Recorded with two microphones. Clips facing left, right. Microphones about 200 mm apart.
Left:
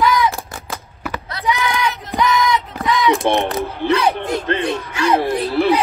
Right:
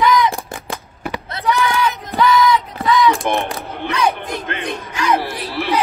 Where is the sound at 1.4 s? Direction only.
15° left (ahead or behind).